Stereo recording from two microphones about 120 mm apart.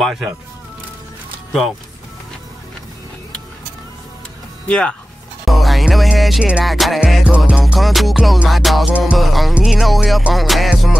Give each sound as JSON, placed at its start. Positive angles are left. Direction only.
{"t": 0.0, "sound": "music", "side_deg": 0}
{"t": 4.6, "sound": "speech", "side_deg": 10}
{"t": 5.4, "sound": "music", "side_deg": 0}